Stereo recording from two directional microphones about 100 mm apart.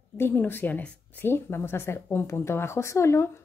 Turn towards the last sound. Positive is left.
turn(degrees=25)  # may be behind; listen again after turning